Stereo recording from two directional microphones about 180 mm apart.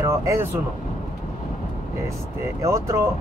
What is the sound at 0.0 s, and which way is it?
Speech, 15° right (ahead or behind).